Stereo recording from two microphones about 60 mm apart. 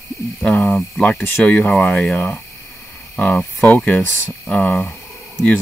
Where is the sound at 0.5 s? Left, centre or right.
Centre.